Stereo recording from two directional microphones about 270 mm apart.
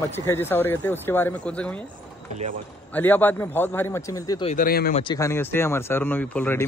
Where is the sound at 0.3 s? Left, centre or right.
Centre.